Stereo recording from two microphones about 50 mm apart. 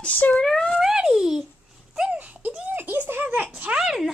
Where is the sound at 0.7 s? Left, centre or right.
Centre.